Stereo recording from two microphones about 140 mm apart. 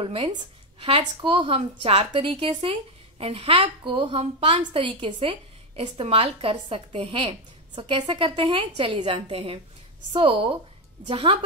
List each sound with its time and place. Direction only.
0.0 s a woman's voice: 40° right (ahead or behind)